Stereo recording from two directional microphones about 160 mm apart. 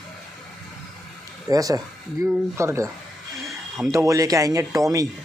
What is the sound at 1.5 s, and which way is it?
Speech, 20° right (ahead or behind).